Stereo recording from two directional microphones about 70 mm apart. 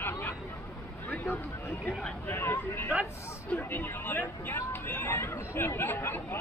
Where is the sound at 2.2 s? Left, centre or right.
Left.